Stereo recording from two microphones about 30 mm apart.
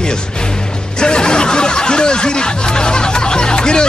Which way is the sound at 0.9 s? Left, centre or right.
Left.